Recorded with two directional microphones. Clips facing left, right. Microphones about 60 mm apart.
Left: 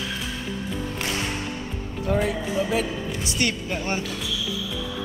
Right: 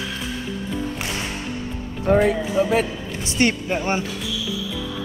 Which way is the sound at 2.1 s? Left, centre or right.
Right.